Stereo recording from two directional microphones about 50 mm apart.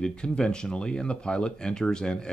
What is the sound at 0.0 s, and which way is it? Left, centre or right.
Speech, centre.